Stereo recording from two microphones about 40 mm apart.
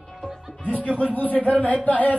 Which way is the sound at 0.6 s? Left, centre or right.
Left.